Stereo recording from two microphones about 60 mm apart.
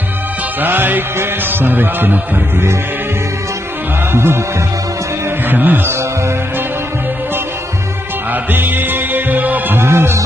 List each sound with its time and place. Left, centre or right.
0.6 s music: right
4.1 s music: right
5.5 s mantra: right
8.5 s music: right
9.8 s music: right